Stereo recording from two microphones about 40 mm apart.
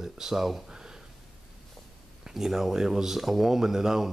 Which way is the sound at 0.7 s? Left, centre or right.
Centre.